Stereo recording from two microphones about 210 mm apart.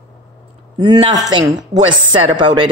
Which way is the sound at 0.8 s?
20° right (ahead or behind).